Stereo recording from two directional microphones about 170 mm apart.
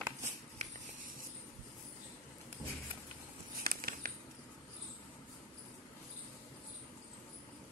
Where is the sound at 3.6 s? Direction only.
60° right (ahead or behind).